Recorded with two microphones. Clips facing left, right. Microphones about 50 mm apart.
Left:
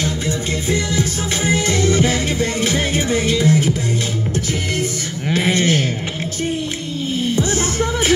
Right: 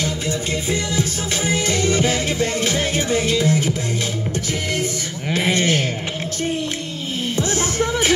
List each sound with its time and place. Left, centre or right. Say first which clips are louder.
1.3 s music: left 3 dB; left
5.3 s sheep: left 2 dB; centre
7.3 s music: right 2 dB; centre